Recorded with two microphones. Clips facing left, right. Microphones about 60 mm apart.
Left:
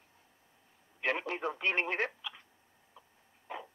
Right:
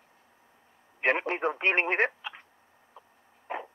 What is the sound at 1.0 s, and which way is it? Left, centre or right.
Speech, right.